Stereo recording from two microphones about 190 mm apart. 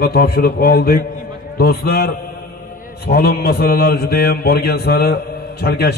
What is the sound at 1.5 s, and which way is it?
Mantra, 55° left (ahead or behind).